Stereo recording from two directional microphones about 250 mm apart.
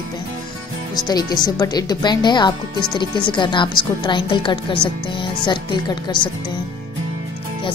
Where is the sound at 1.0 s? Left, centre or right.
Centre.